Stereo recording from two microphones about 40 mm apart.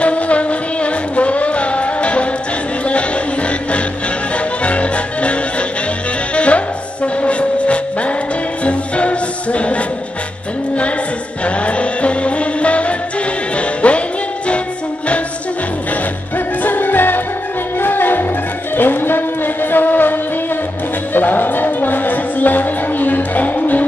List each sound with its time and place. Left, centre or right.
0.0 s music: left
11.4 s music: left
16.3 s music: left